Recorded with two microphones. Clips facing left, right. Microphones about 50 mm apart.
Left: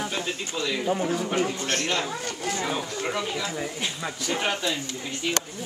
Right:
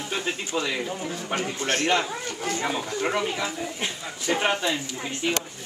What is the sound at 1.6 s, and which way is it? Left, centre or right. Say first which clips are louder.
Speech: right 3 dB; right.